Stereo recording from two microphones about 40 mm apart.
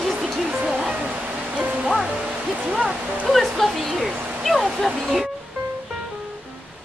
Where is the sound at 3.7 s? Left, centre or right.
Centre.